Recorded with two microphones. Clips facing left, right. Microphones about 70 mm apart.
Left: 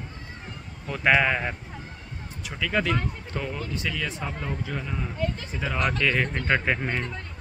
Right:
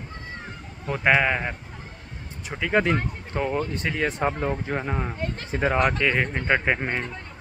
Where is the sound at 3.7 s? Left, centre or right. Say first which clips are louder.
Right 4 dB; right.